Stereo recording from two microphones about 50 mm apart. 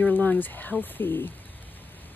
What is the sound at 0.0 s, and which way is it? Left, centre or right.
Speech, left.